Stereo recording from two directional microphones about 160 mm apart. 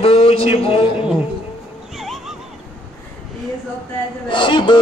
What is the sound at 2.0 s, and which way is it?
Neigh, centre (ahead or behind).